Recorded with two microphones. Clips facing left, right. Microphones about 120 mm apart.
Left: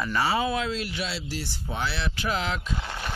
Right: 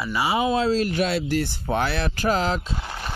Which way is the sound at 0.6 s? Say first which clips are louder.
Right 8 dB; 40° right (ahead or behind).